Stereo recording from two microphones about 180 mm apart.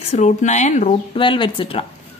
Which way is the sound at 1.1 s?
30° left (ahead or behind).